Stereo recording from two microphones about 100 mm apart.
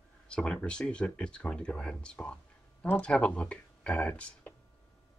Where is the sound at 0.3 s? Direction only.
10° left (ahead or behind).